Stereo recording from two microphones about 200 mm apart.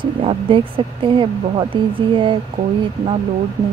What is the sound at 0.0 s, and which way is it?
Speech, 25° right (ahead or behind).